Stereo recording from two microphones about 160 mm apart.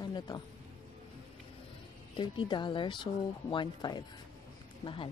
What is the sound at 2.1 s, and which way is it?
Speech, 30° left (ahead or behind).